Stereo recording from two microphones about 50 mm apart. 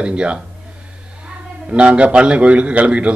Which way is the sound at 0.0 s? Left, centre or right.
Right.